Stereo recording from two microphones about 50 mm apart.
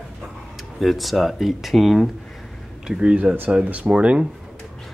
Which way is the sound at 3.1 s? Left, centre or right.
Right.